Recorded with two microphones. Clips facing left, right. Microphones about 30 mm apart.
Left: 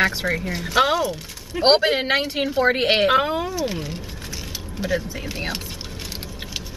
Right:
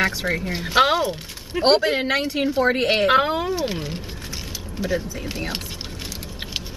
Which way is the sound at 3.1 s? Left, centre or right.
Centre.